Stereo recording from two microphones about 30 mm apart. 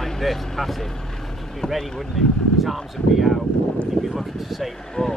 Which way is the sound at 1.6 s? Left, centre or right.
Left.